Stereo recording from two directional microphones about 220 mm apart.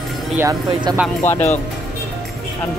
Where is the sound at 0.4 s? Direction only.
15° right (ahead or behind).